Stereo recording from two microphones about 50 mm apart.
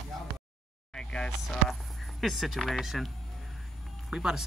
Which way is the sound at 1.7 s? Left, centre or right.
Centre.